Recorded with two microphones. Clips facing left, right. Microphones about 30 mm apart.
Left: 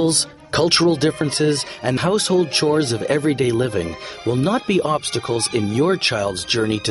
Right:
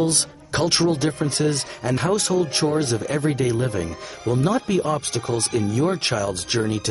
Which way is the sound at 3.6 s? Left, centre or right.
Left.